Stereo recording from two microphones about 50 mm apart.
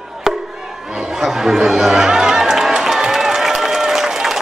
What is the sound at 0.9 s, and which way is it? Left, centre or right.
Chatter, centre.